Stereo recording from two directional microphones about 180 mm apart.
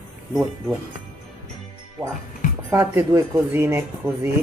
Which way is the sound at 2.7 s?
20° right (ahead or behind).